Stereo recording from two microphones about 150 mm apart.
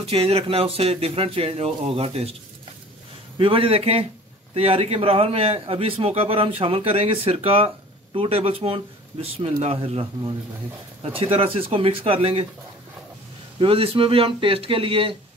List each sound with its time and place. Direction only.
0.0 s a man's voice: 40° right (ahead or behind)
3.3 s a man's voice: 35° right (ahead or behind)
13.6 s a man's voice: 40° right (ahead or behind)